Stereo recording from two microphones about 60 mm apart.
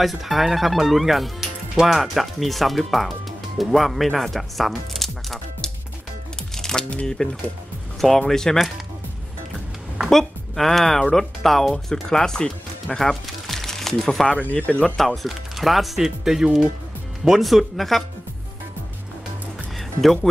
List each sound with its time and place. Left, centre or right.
0.0 s speech: centre
8.2 s speech: centre
8.5 s speech: centre
10.0 s speech: centre
19.8 s music: centre